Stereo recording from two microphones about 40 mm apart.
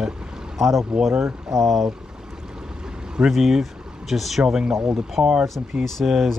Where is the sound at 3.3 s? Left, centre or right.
Centre.